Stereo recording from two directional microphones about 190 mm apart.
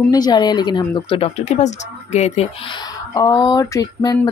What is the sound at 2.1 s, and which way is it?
Sizzle, 35° left (ahead or behind).